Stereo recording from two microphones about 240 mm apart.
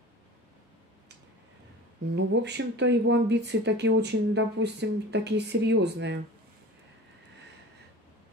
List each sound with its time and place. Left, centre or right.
2.1 s speech: right